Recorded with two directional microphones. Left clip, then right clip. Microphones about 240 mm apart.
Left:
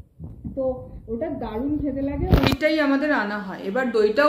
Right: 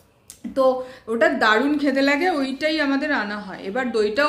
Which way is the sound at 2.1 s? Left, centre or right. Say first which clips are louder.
Right 3 dB; centre.